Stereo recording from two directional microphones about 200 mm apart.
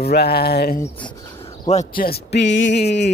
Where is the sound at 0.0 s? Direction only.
55° left (ahead or behind).